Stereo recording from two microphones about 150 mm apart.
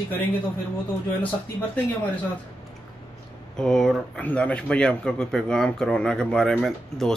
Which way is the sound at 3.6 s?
5° left (ahead or behind).